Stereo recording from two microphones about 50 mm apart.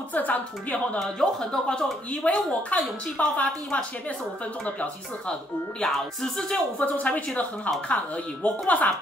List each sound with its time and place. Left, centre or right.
0.1 s speech: left
1.2 s speech: centre
2.2 s speech: left
5.8 s speech: centre
6.8 s speech: left